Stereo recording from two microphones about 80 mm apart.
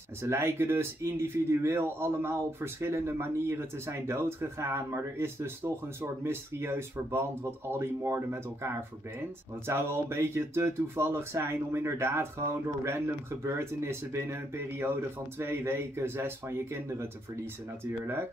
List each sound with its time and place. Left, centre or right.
0.2 s speech: right
9.7 s speech: right